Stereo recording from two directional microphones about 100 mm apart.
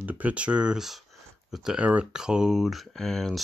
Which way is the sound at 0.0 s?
15° right (ahead or behind).